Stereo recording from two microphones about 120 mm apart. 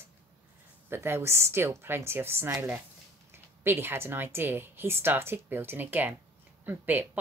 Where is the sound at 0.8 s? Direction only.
20° right (ahead or behind).